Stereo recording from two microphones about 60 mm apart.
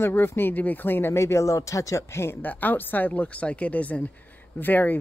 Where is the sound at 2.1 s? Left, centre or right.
Left.